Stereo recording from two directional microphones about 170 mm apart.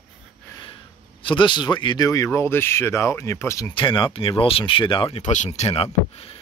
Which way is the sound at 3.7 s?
30° left (ahead or behind).